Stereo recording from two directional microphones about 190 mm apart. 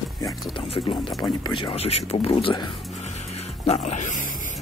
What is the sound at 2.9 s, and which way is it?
Music, 35° left (ahead or behind).